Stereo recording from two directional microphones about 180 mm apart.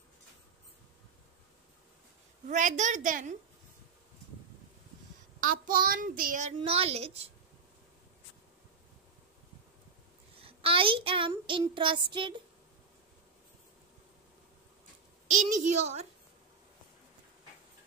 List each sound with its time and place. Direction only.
2.4 s a woman's voice: 45° right (ahead or behind)
5.7 s a woman's voice: 50° right (ahead or behind)
6.6 s a woman's voice: 35° right (ahead or behind)
10.4 s child singing: 30° right (ahead or behind)
15.3 s a woman's voice: 40° right (ahead or behind)